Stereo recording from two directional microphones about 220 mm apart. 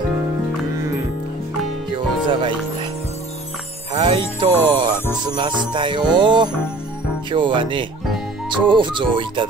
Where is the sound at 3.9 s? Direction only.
20° right (ahead or behind).